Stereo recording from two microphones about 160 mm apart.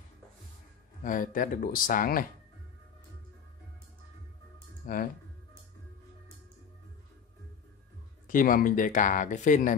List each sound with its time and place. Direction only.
1.0 s speech: 55° left (ahead or behind)
4.8 s speech: 65° left (ahead or behind)
8.3 s speech: 60° left (ahead or behind)